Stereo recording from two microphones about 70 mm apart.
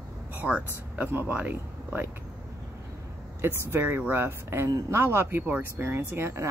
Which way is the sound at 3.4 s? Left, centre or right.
Right.